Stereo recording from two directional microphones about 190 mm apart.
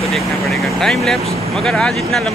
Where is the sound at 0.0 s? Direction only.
Centre (ahead or behind).